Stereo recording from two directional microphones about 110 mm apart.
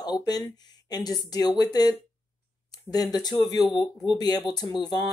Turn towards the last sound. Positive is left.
turn(degrees=40)  # may be behind; listen again after turning